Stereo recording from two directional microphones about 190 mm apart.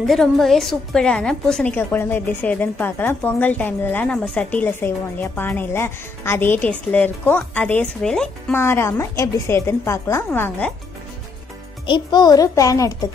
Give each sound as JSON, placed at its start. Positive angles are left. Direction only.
{"t": 0.0, "sound": "a woman's voice", "side_deg": 0}
{"t": 11.8, "sound": "a child's voice", "side_deg": 25}